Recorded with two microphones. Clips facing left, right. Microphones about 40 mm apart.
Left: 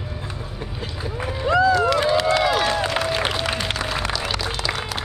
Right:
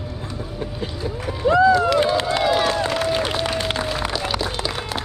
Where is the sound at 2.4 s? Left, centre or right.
Centre.